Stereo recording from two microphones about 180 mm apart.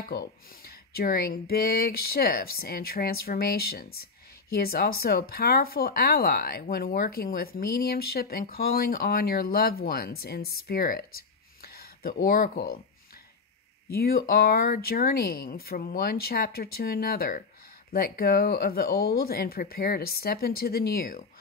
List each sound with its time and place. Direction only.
0.1 s speech: 60° left (ahead or behind)
13.8 s speech: 60° left (ahead or behind)